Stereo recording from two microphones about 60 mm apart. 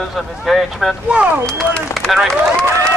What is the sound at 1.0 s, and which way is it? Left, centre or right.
Speech, right.